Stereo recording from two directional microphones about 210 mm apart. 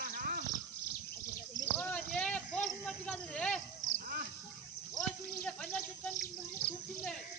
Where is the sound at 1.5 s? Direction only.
5° left (ahead or behind).